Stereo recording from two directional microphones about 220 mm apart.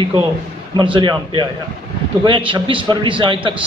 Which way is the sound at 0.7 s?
20° right (ahead or behind).